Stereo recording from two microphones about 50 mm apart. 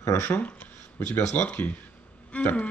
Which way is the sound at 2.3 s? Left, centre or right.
Left.